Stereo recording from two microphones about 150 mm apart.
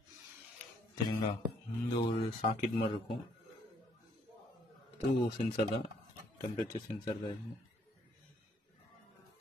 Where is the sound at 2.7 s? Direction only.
40° left (ahead or behind).